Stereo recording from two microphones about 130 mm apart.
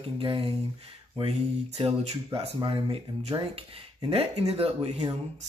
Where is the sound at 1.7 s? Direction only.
50° right (ahead or behind).